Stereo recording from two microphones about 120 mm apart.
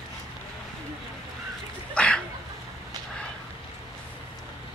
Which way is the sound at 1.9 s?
5° left (ahead or behind).